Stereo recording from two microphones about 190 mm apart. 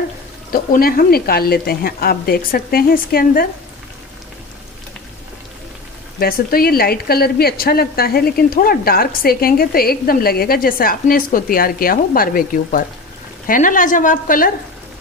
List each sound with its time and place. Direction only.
0.5 s a woman's voice: 50° left (ahead or behind)
6.1 s a woman's voice: 50° left (ahead or behind)